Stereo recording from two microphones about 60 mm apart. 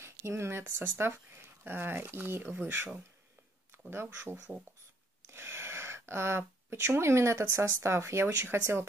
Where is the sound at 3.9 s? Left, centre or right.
Right.